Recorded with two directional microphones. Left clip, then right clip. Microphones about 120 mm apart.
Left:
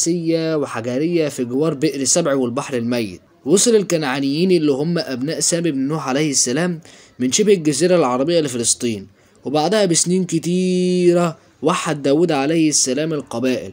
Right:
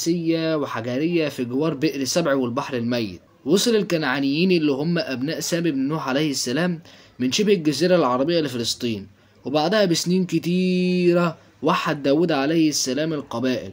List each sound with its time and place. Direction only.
0.0 s speech: 30° left (ahead or behind)